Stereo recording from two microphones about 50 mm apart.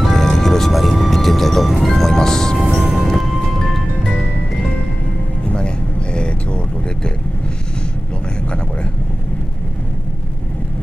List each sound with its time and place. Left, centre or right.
0.0 s music: centre
2.6 s music: centre
6.1 s vehicle: left